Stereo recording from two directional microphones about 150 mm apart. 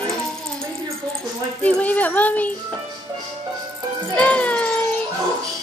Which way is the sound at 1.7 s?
10° left (ahead or behind).